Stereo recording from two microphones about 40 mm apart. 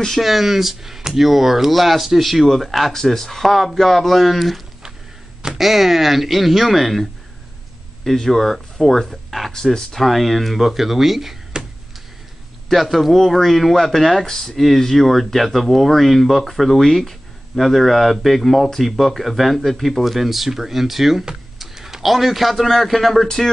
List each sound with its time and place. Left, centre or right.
0.2 s speech: centre
11.5 s a sound: centre
12.6 s speech: centre